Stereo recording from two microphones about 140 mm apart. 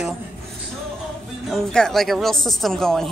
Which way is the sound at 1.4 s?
5° left (ahead or behind).